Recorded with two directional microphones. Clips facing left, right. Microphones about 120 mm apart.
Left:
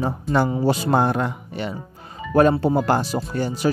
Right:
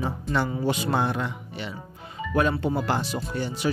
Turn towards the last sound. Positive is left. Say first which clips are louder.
# left 5 dB
turn(degrees=40)  # may be behind; listen again after turning